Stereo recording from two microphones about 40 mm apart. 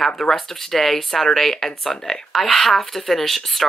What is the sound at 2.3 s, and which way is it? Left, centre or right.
Speech, centre.